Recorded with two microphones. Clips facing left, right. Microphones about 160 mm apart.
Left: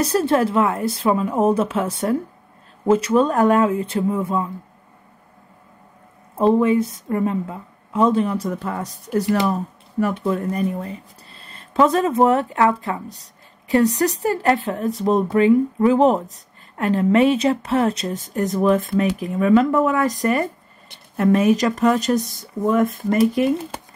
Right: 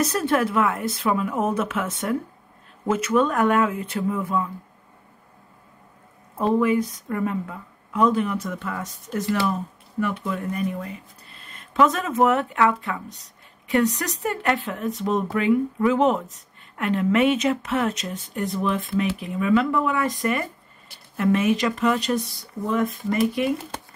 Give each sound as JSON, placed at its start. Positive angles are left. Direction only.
{"t": 0.0, "sound": "speech", "side_deg": 30}
{"t": 6.3, "sound": "speech", "side_deg": 25}